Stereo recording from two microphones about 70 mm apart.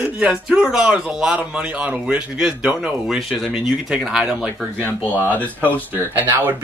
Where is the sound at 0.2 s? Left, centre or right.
Centre.